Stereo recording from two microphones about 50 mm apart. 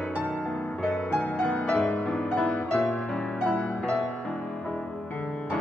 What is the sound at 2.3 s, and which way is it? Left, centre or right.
Music, left.